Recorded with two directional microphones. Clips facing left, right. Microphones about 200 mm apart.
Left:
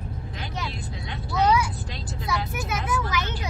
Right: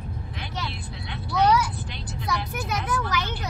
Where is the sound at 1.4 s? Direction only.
10° left (ahead or behind).